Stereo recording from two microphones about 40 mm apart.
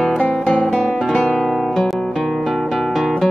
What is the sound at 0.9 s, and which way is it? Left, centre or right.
Guitar, centre.